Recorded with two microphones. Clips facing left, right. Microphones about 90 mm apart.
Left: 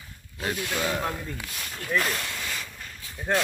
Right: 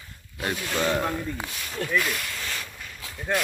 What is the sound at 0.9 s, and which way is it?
Speech, centre (ahead or behind).